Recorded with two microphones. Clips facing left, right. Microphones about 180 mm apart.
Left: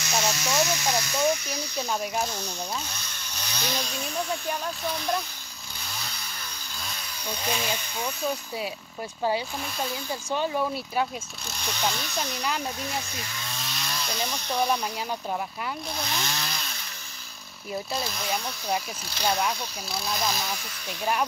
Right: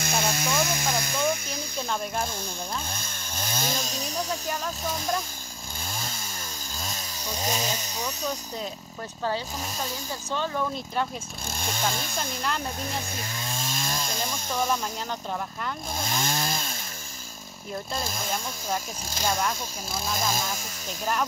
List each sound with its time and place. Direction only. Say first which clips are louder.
0.0 s speech: right 1 dB; 55° right (ahead or behind)
2.9 s speech: right 3 dB; 50° right (ahead or behind)
5.9 s chainsaw: right 3 dB; 45° right (ahead or behind)
10.3 s speech: left 2 dB; 15° left (ahead or behind)
11.5 s speech: even; 50° right (ahead or behind)
13.4 s chainsaw: right 4 dB; 45° right (ahead or behind)
16.0 s chainsaw: right 3 dB; 45° right (ahead or behind)
17.9 s speech: even; 45° right (ahead or behind)
19.9 s speech: even; 45° right (ahead or behind)